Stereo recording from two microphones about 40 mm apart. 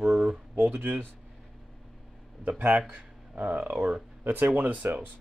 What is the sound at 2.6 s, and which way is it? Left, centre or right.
Speech, right.